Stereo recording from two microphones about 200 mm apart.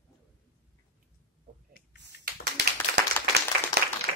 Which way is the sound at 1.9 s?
55° right (ahead or behind).